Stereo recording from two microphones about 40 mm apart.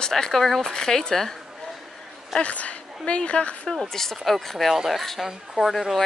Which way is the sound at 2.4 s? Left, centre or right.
Left.